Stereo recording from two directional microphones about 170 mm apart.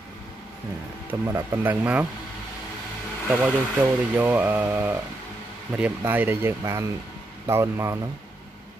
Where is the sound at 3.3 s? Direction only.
10° right (ahead or behind).